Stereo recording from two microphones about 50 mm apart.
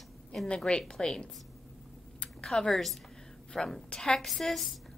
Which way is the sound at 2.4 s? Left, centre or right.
Centre.